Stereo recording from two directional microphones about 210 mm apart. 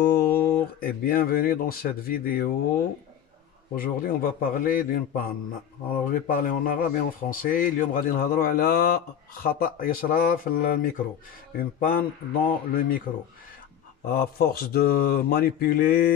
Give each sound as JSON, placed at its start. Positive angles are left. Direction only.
{"t": 0.0, "sound": "speech", "side_deg": 45}
{"t": 3.7, "sound": "a man's voice", "side_deg": 45}
{"t": 14.0, "sound": "a man's voice", "side_deg": 45}